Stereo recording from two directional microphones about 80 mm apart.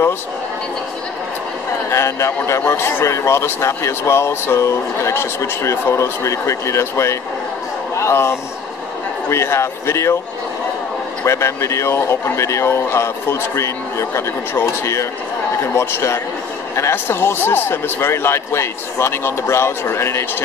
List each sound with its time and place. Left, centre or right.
1.9 s a man's voice: left
11.2 s a man's voice: left